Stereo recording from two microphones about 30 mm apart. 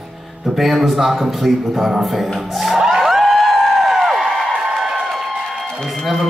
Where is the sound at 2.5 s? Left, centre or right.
Centre.